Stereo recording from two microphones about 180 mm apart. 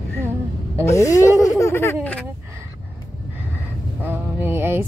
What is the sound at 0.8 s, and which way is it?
Vehicle, 15° left (ahead or behind).